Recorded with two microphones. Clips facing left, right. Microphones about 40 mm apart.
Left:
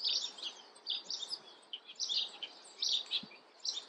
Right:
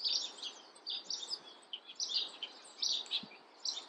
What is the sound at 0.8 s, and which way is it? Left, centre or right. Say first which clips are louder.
Bird: left 2 dB; left.